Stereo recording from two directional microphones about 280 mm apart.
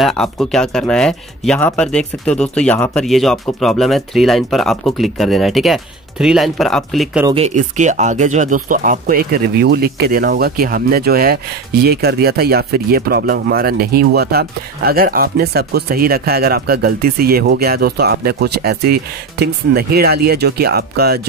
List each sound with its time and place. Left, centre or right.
0.0 s speech: centre
7.2 s speech: right